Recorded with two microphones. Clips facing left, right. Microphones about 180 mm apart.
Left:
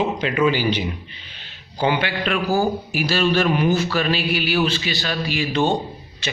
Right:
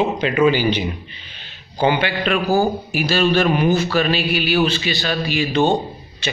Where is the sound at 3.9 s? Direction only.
65° right (ahead or behind).